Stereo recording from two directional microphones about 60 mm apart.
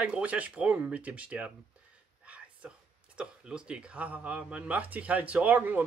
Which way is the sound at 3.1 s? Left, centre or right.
Centre.